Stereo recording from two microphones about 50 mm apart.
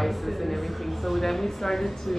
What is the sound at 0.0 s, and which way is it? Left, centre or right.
A woman's voice, centre.